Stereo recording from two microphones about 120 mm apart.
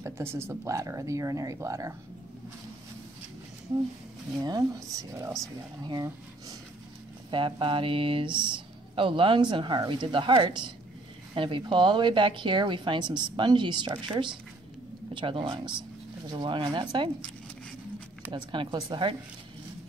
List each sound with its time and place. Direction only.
0.0 s speech: 20° right (ahead or behind)
4.4 s speech: 35° right (ahead or behind)
7.2 s a woman's voice: 45° right (ahead or behind)
18.3 s a woman's voice: 40° right (ahead or behind)